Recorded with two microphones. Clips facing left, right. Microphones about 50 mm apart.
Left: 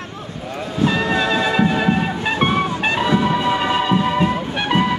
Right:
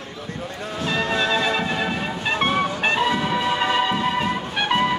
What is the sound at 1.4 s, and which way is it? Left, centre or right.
Music, centre.